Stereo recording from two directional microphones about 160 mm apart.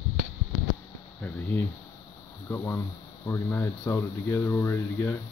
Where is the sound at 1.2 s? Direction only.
10° left (ahead or behind).